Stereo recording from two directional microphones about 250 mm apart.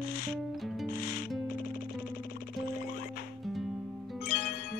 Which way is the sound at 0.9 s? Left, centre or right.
Left.